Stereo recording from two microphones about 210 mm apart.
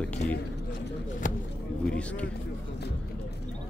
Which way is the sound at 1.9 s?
5° left (ahead or behind).